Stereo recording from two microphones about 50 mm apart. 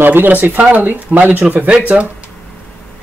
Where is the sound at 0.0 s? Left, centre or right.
Right.